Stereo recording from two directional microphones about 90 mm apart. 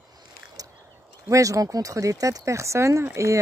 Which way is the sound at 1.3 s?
40° right (ahead or behind).